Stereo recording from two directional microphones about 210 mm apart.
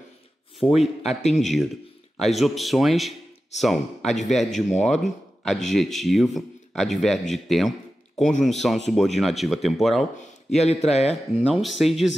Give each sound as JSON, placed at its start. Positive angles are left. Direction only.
{"t": 0.6, "sound": "speech", "side_deg": 0}
{"t": 10.5, "sound": "speech", "side_deg": 30}
{"t": 11.5, "sound": "speech", "side_deg": 0}